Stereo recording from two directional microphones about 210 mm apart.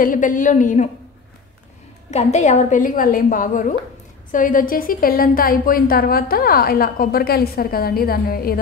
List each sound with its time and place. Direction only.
0.0 s a woman's voice: 40° left (ahead or behind)
2.0 s a woman's voice: 35° left (ahead or behind)